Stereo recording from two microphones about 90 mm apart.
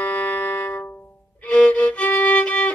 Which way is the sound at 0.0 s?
20° left (ahead or behind).